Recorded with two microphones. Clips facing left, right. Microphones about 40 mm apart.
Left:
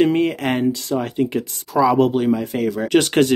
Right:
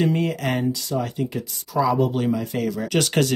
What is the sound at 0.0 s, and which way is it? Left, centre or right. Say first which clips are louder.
Speech: left 5 dB; left.